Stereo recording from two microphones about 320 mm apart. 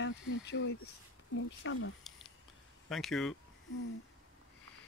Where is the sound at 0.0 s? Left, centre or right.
Left.